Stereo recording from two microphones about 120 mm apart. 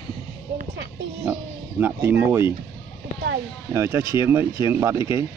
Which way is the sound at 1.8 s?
20° right (ahead or behind).